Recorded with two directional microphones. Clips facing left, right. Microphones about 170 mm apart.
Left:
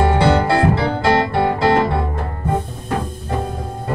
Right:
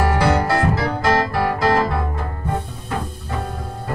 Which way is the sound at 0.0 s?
25° left (ahead or behind).